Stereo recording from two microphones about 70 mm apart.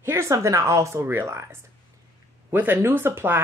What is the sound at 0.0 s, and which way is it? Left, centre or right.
Speech, right.